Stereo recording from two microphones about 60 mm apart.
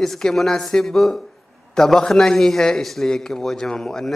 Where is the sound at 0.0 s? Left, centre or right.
Centre.